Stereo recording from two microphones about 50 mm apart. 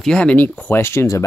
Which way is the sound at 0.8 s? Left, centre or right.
Left.